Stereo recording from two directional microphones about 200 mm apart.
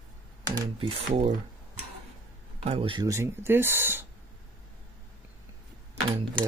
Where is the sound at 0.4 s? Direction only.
20° right (ahead or behind).